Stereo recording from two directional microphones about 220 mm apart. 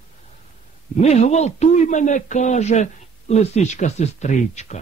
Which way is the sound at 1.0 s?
30° left (ahead or behind).